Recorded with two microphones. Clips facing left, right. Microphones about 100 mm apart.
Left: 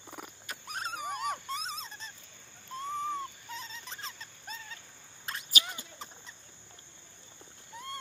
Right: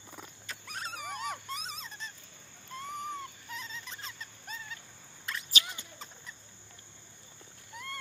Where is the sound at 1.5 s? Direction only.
30° left (ahead or behind).